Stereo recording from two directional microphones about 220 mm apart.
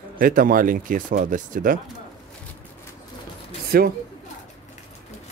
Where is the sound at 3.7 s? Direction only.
45° right (ahead or behind).